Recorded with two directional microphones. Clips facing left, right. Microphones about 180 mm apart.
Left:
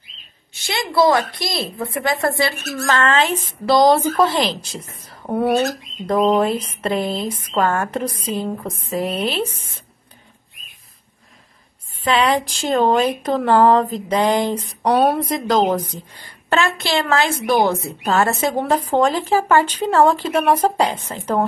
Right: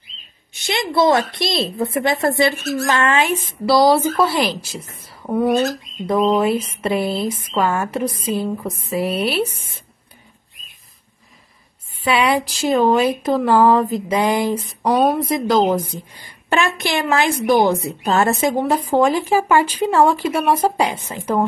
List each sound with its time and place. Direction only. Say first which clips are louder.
0.6 s a woman's voice: even; 20° right (ahead or behind)
12.0 s speech: even; 10° right (ahead or behind)